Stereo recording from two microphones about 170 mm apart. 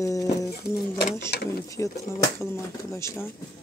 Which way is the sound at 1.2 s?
70° left (ahead or behind).